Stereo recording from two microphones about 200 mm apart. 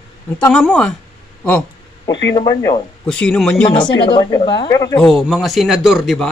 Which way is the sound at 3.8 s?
25° left (ahead or behind).